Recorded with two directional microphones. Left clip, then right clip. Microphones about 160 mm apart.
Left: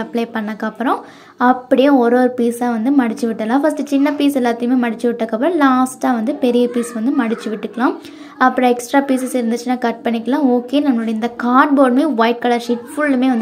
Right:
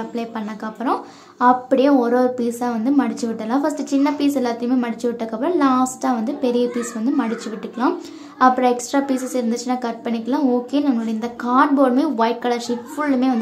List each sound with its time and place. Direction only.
0.1 s a woman's voice: 20° left (ahead or behind)